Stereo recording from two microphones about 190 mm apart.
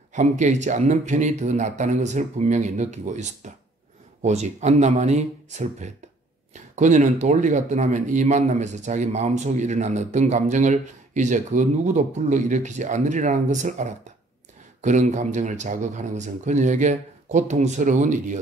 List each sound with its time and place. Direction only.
0.1 s speech: 40° right (ahead or behind)